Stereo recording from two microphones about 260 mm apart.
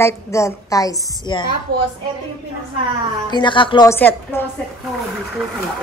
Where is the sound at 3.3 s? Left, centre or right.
Centre.